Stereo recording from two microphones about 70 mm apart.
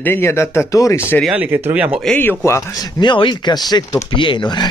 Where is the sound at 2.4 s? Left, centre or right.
Left.